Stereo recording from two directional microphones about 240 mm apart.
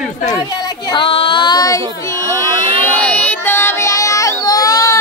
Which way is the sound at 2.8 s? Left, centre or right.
Centre.